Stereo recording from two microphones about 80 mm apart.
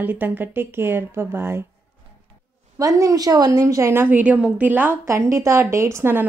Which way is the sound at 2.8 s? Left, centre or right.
Right.